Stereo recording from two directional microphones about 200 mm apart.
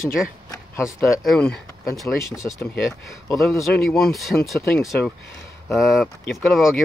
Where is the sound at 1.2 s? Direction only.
Centre (ahead or behind).